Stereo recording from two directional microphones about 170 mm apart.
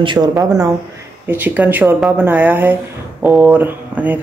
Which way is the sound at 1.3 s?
10° right (ahead or behind).